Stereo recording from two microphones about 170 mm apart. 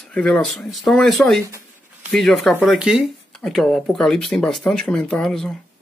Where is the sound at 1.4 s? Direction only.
15° right (ahead or behind).